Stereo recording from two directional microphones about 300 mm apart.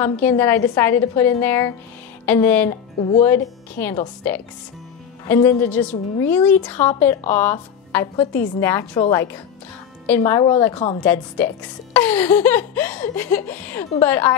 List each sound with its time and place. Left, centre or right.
0.0 s a woman's voice: centre
5.2 s a woman's voice: centre
10.7 s a woman's voice: left
11.1 s a woman's voice: centre